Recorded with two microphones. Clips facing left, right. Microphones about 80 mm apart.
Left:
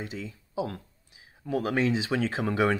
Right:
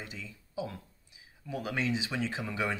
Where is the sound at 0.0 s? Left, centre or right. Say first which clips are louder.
Left 7 dB; left.